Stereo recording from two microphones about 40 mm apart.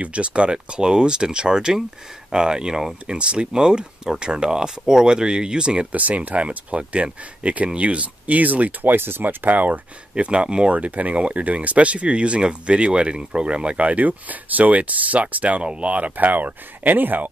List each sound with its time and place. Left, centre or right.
0.0 s speech: right
5.9 s speech: right
8.8 s speech: right
10.1 s speech: right
10.7 s speech: right